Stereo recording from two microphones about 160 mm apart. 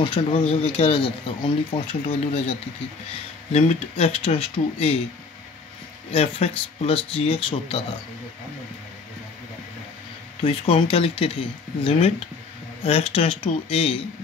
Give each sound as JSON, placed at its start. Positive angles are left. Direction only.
{"t": 0.0, "sound": "speech", "side_deg": 35}
{"t": 3.5, "sound": "speech", "side_deg": 40}
{"t": 6.1, "sound": "speech", "side_deg": 40}
{"t": 10.4, "sound": "speech", "side_deg": 35}